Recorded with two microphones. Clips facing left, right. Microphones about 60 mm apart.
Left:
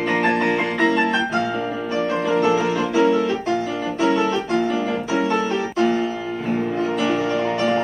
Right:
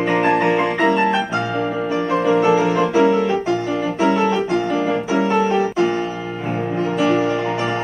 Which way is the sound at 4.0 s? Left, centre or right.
Right.